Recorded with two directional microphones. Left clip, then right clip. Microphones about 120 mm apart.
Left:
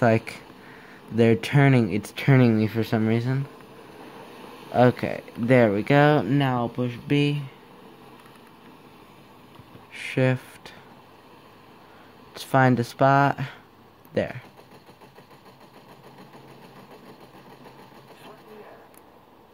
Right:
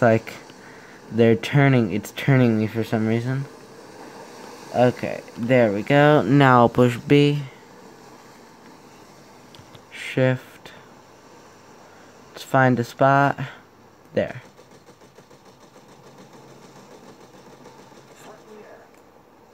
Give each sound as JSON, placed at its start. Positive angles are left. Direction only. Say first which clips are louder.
{"t": 0.0, "sound": "speech", "louder": "right 3 dB", "side_deg": -10}
{"t": 4.0, "sound": "a sound", "louder": "right 3 dB", "side_deg": 5}
{"t": 6.3, "sound": "speech", "louder": "right 10 dB", "side_deg": -65}
{"t": 7.1, "sound": "speech", "louder": "right 4 dB", "side_deg": -45}
{"t": 9.9, "sound": "a sound", "louder": "right 3 dB", "side_deg": -15}
{"t": 12.4, "sound": "speech", "louder": "right 2 dB", "side_deg": -5}